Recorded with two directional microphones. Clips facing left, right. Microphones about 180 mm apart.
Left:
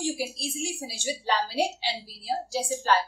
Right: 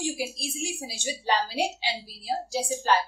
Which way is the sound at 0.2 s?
15° right (ahead or behind).